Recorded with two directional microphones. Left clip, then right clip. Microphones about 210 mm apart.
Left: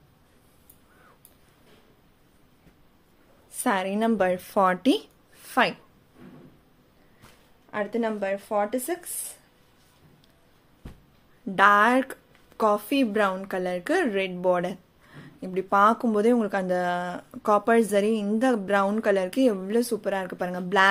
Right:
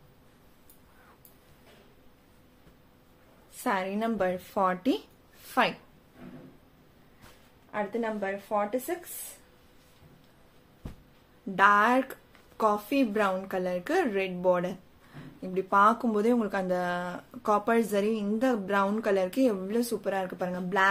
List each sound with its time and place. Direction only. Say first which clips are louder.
3.5 s a woman's voice: left 4 dB; 45° left (ahead or behind)
7.7 s speech: left 4 dB; 50° left (ahead or behind)
11.5 s speech: left 3 dB; 40° left (ahead or behind)